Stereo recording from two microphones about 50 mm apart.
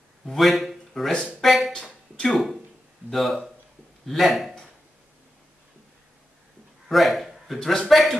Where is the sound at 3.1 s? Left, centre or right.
Centre.